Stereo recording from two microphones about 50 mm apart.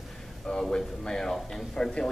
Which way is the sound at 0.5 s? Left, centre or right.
Centre.